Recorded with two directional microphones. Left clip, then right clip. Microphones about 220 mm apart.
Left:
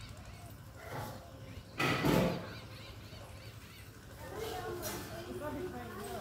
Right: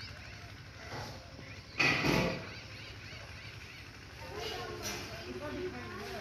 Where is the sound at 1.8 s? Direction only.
50° left (ahead or behind).